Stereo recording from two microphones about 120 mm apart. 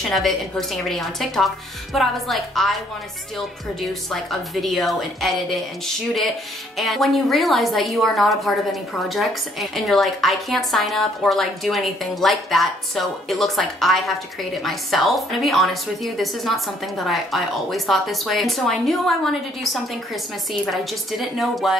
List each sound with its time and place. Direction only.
0.0 s speech: centre (ahead or behind)
4.1 s speech: centre (ahead or behind)
6.8 s speech: centre (ahead or behind)
20.7 s speech: centre (ahead or behind)